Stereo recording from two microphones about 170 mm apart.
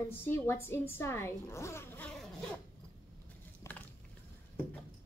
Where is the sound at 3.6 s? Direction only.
10° left (ahead or behind).